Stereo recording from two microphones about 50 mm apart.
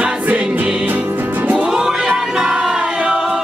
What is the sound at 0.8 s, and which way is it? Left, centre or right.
Music, right.